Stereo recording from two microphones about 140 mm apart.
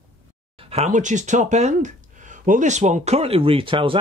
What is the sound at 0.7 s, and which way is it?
Speech, 60° right (ahead or behind).